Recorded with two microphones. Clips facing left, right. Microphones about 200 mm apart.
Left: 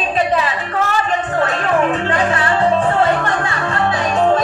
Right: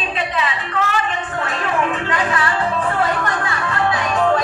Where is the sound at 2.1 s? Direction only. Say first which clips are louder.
Left 4 dB; 30° left (ahead or behind).